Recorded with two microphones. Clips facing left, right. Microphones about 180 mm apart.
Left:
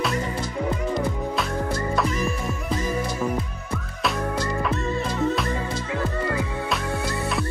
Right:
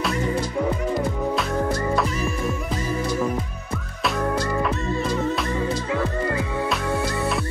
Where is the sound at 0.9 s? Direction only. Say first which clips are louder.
Right 2 dB; centre (ahead or behind).